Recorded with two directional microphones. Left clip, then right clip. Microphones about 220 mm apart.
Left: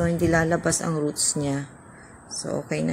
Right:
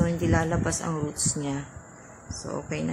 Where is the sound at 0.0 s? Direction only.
15° left (ahead or behind).